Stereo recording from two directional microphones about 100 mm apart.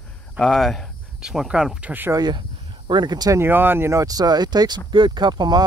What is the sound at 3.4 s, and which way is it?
Speech, 20° right (ahead or behind).